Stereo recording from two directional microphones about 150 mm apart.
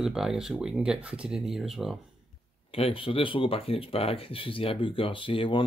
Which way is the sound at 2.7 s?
40° left (ahead or behind).